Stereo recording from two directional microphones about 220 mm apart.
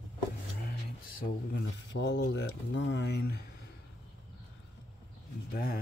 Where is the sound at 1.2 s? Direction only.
55° left (ahead or behind).